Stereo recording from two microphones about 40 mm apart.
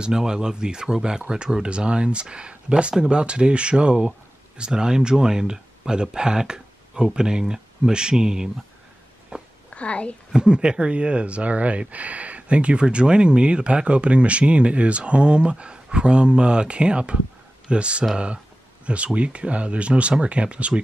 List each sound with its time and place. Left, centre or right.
0.0 s speech: centre
9.3 s a sound: right
9.7 s a woman's voice: left
10.3 s speech: right